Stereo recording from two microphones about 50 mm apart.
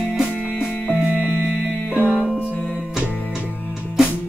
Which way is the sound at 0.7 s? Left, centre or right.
Left.